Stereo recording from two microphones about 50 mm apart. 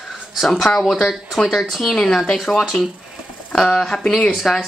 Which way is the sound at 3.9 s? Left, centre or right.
Left.